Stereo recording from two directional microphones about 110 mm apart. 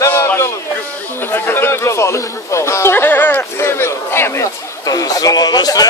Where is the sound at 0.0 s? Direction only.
25° left (ahead or behind).